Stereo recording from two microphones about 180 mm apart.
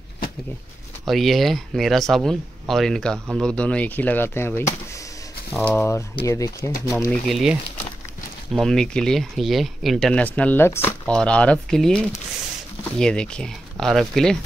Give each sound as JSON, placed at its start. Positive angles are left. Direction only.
{"t": 1.0, "sound": "speech", "side_deg": 0}
{"t": 7.1, "sound": "speech", "side_deg": 0}